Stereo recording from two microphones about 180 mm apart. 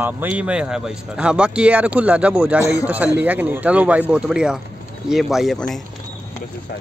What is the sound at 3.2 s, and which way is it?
A man's voice, 10° right (ahead or behind).